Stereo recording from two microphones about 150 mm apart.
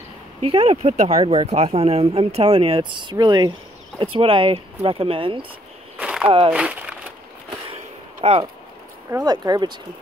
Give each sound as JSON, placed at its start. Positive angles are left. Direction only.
{"t": 0.5, "sound": "speech", "side_deg": -40}
{"t": 5.9, "sound": "a sound", "side_deg": -5}
{"t": 6.2, "sound": "speech", "side_deg": -40}
{"t": 6.5, "sound": "speech", "side_deg": -10}
{"t": 7.7, "sound": "a sound", "side_deg": -45}
{"t": 9.2, "sound": "speech", "side_deg": -30}